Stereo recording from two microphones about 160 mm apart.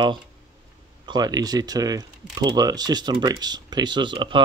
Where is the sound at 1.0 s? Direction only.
25° right (ahead or behind).